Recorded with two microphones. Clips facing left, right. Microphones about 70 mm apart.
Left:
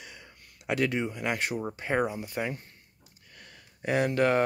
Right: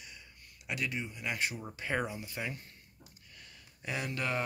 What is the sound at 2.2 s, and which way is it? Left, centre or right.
Speech, left.